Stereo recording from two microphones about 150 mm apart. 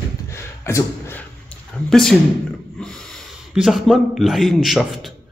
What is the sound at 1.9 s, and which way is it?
A man's voice, 5° left (ahead or behind).